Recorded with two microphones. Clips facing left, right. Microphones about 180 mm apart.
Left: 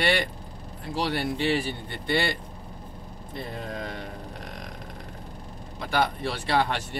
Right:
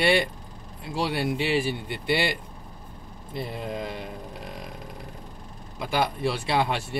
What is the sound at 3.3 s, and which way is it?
Speech, 10° right (ahead or behind).